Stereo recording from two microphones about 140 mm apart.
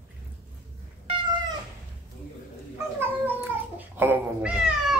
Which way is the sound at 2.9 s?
15° right (ahead or behind).